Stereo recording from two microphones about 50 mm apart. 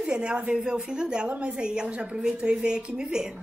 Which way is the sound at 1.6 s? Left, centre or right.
Centre.